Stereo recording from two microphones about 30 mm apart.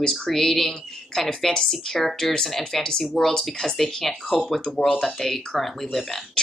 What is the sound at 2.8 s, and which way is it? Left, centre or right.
Speech, left.